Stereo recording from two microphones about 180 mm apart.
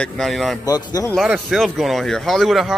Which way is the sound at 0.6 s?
20° left (ahead or behind).